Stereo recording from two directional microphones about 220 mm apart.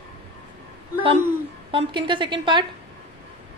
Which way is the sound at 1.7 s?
20° right (ahead or behind).